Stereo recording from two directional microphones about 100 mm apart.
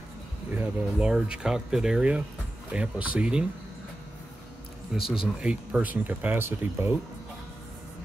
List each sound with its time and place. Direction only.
0.5 s a sound: 20° right (ahead or behind)
0.9 s speech: 10° right (ahead or behind)
4.9 s speech: 5° right (ahead or behind)